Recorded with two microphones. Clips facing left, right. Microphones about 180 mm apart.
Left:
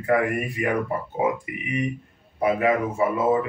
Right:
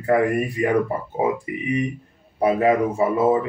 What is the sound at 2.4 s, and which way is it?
Speech, 35° right (ahead or behind).